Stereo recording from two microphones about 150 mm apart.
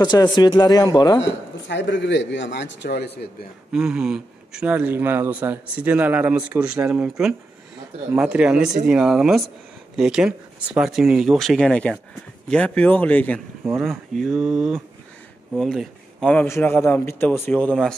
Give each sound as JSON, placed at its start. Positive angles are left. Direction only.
{"t": 0.0, "sound": "speech", "side_deg": 30}
{"t": 2.9, "sound": "speech", "side_deg": 90}
{"t": 3.7, "sound": "a man's voice", "side_deg": -5}